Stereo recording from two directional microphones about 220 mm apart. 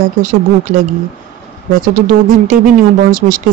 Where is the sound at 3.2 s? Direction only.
35° right (ahead or behind).